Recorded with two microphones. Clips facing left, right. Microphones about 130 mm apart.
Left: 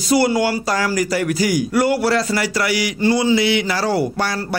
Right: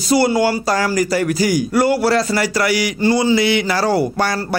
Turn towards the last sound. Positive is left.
turn(degrees=-45)  # may be behind; listen again after turning